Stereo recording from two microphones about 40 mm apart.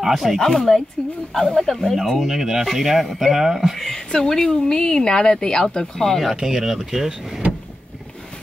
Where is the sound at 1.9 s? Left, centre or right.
Centre.